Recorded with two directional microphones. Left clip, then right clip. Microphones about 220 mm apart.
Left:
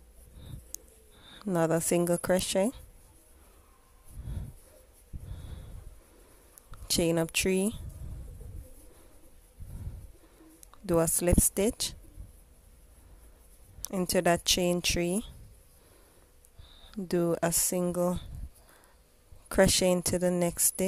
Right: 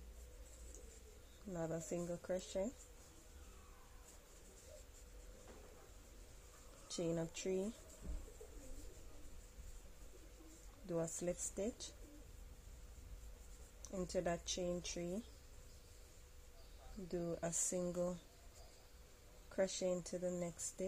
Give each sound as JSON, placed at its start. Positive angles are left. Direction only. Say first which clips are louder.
{"t": 1.4, "sound": "speech", "louder": "left 18 dB", "side_deg": 40}
{"t": 7.0, "sound": "speech", "louder": "left 15 dB", "side_deg": 40}
{"t": 10.9, "sound": "speech", "louder": "left 16 dB", "side_deg": 40}
{"t": 13.7, "sound": "speech", "louder": "left 13 dB", "side_deg": 40}
{"t": 17.1, "sound": "speech", "louder": "left 16 dB", "side_deg": 50}
{"t": 17.6, "sound": "speech", "louder": "left 12 dB", "side_deg": 30}
{"t": 19.5, "sound": "speech", "louder": "left 15 dB", "side_deg": 40}